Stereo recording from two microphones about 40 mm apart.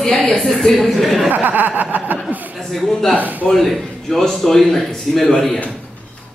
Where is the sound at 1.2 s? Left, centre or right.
Right.